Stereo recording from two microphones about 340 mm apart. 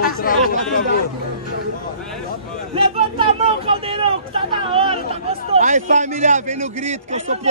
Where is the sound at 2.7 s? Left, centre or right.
Centre.